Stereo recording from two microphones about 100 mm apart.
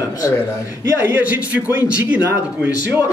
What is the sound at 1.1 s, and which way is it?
A man's voice, 15° right (ahead or behind).